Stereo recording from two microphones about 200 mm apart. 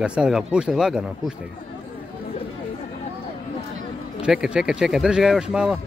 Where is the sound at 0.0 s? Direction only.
5° right (ahead or behind).